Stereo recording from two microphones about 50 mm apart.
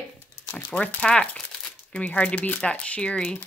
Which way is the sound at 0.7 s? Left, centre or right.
Left.